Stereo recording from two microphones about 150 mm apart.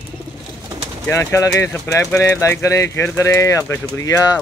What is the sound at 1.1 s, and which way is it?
Speech, 20° left (ahead or behind).